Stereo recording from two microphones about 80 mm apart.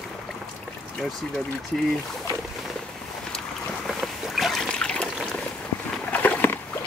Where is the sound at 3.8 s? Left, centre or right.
Centre.